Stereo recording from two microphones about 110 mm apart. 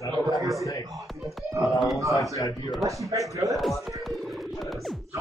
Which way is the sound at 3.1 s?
30° right (ahead or behind).